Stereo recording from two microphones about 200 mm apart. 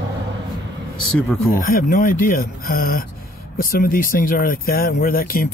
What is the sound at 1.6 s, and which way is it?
Speech, 45° left (ahead or behind).